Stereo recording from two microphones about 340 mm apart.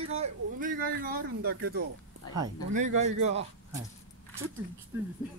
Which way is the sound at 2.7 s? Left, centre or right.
Right.